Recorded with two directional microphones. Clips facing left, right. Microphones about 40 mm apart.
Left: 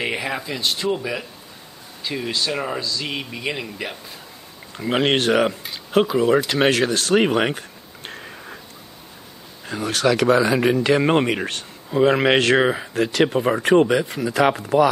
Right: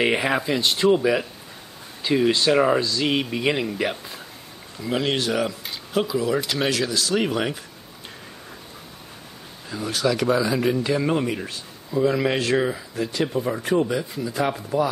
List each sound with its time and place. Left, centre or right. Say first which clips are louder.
0.0 s speech: right 4 dB; centre
4.7 s speech: left 4 dB; left
9.7 s speech: left 4 dB; left